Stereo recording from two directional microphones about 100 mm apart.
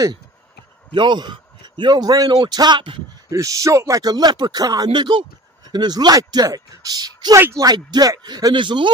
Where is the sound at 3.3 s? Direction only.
35° right (ahead or behind).